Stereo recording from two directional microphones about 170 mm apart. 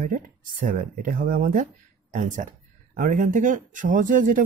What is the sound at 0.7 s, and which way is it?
Speech, 50° right (ahead or behind).